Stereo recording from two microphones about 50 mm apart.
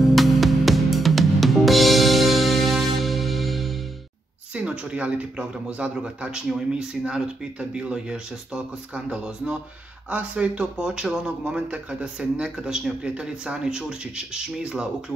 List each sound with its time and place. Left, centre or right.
0.1 s music: centre
4.6 s speech: right